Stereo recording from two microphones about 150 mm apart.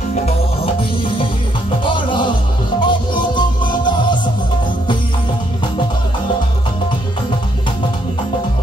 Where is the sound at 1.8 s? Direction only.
35° left (ahead or behind).